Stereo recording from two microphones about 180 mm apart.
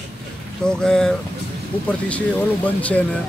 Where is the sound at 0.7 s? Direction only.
5° left (ahead or behind).